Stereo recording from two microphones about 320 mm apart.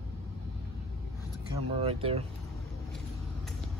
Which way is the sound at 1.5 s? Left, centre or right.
Centre.